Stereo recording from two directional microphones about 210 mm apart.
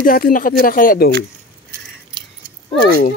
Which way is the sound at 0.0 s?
45° left (ahead or behind).